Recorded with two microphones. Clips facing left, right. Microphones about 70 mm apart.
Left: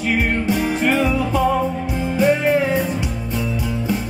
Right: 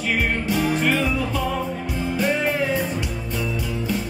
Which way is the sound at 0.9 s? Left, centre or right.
Centre.